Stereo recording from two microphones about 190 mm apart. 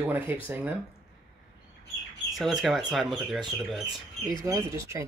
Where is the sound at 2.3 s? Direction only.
Centre (ahead or behind).